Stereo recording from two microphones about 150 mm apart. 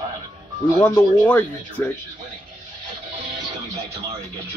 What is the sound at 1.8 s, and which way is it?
Speech, 15° left (ahead or behind).